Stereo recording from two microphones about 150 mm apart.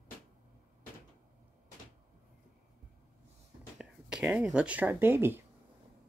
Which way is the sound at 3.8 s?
5° right (ahead or behind).